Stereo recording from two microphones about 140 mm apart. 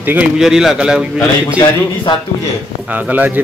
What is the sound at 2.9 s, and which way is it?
Speech, 10° right (ahead or behind).